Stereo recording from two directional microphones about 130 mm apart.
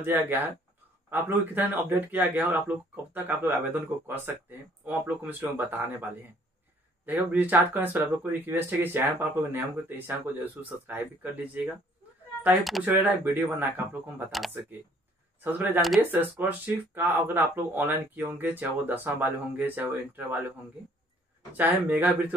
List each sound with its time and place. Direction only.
0.0 s speech: 15° right (ahead or behind)
7.1 s speech: 15° right (ahead or behind)
12.8 s speech: 15° right (ahead or behind)
15.4 s speech: 15° right (ahead or behind)
21.5 s speech: 15° right (ahead or behind)